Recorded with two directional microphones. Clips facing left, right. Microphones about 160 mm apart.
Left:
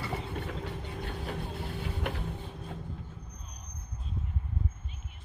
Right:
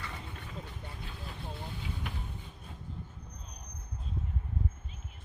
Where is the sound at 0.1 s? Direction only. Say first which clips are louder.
Left 8 dB; 70° left (ahead or behind).